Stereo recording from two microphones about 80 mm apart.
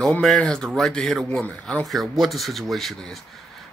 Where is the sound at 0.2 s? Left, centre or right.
Centre.